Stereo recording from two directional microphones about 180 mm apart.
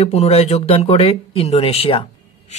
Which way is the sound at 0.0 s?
35° left (ahead or behind).